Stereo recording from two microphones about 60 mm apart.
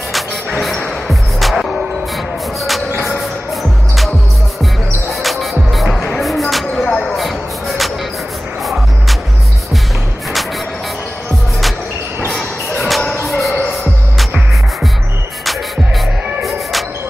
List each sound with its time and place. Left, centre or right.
0.1 s music: centre
5.2 s music: centre
6.2 s basketball bounce: centre
12.3 s basketball bounce: centre
13.0 s music: left
13.3 s music: centre